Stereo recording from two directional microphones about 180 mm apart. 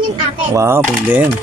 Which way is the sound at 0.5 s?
15° right (ahead or behind).